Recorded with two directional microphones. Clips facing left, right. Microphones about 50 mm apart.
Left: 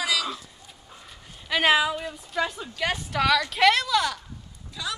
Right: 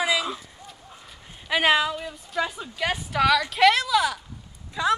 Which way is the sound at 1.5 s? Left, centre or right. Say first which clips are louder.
Even; centre.